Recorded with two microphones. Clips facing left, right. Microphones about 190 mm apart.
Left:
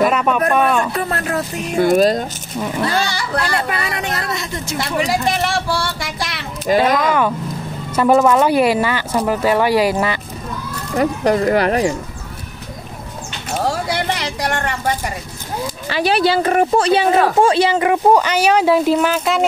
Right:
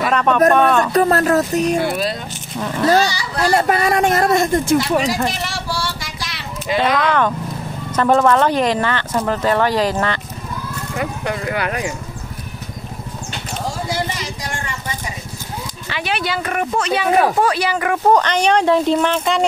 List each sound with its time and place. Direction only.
0.0 s a sound: 5° left (ahead or behind)
0.5 s speech: 10° left (ahead or behind)
0.9 s speech: 40° right (ahead or behind)
1.8 s speech: 45° left (ahead or behind)
3.5 s speech: 45° right (ahead or behind)
5.0 s a sound: 55° left (ahead or behind)
7.0 s speech: 10° left (ahead or behind)
11.0 s a woman's voice: 40° left (ahead or behind)
13.7 s vehicle: 70° left (ahead or behind)
15.9 s a woman's voice: 35° left (ahead or behind)
18.1 s speech: 5° left (ahead or behind)